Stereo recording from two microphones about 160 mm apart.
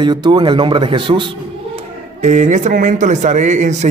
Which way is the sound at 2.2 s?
45° right (ahead or behind).